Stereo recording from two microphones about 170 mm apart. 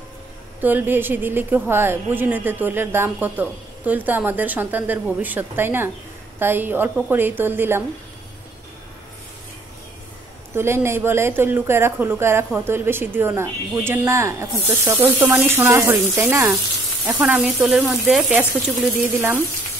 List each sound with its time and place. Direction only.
0.6 s a woman's voice: 10° right (ahead or behind)
10.5 s a woman's voice: 15° right (ahead or behind)